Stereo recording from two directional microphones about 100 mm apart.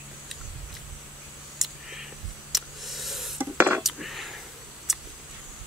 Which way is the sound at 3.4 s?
20° right (ahead or behind).